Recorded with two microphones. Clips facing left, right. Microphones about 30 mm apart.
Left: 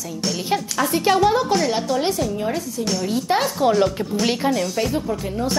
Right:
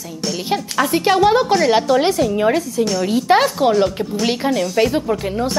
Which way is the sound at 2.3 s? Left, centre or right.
Right.